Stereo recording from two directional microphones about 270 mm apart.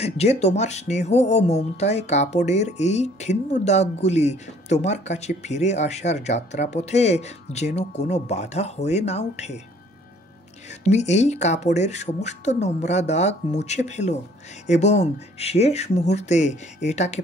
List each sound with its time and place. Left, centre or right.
0.0 s speech: left
10.7 s speech: left